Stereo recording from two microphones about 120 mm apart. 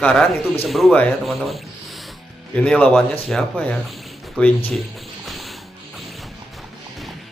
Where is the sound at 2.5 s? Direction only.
10° left (ahead or behind).